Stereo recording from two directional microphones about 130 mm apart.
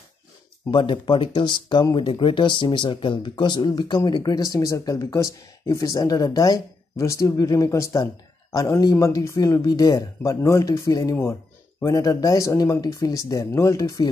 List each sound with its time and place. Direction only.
0.7 s speech: 40° left (ahead or behind)